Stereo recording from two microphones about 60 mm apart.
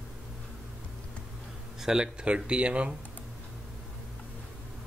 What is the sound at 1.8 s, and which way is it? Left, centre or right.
Speech, centre.